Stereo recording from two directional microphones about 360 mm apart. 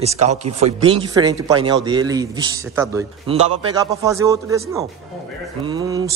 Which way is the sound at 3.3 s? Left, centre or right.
Centre.